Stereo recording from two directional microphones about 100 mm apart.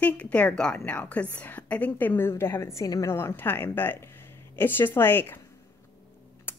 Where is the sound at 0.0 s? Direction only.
15° left (ahead or behind); by 3.2 s 35° left (ahead or behind).